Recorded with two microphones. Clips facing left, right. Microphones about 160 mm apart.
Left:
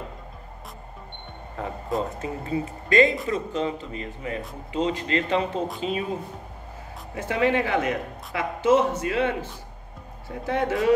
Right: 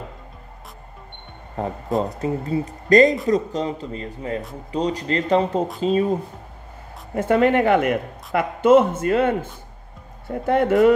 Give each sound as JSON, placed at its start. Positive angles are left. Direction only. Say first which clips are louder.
{"t": 1.6, "sound": "speech", "louder": "right 5 dB", "side_deg": -40}
{"t": 7.2, "sound": "speech", "louder": "right 6 dB", "side_deg": -50}